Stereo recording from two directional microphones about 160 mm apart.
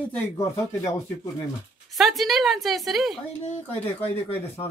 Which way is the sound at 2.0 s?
Centre (ahead or behind).